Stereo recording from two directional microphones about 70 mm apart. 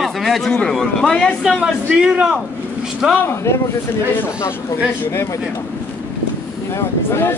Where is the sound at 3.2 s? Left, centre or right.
Left.